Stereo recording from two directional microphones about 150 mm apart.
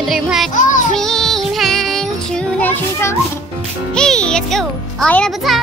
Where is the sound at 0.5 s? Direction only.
60° left (ahead or behind).